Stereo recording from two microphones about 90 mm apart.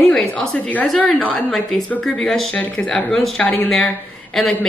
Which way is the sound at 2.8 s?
5° left (ahead or behind).